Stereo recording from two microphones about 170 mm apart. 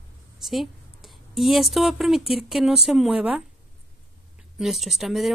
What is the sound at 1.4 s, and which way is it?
A woman's voice, centre (ahead or behind).